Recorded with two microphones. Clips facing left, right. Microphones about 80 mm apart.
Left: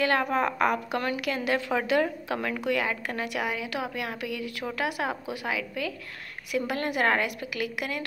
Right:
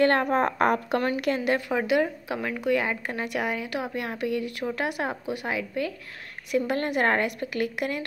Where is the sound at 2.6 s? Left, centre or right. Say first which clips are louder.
Right 2 dB; right.